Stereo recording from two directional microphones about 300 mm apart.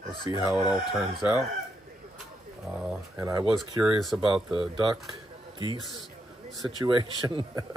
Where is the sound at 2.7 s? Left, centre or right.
Centre.